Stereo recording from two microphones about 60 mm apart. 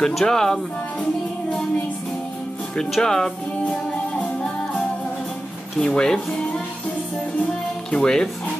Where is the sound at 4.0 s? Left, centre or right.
Centre.